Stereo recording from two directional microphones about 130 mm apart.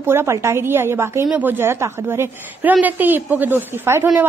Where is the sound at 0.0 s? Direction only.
20° right (ahead or behind).